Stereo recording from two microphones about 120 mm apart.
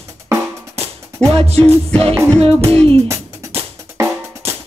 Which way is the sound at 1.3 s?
55° right (ahead or behind).